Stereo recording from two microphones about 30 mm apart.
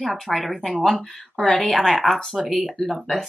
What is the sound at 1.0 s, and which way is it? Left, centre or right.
Speech, centre.